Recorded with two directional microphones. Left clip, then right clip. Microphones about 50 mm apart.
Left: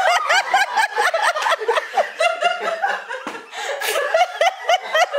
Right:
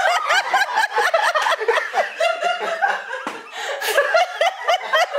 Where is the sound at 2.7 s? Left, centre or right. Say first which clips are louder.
Right 2 dB; centre.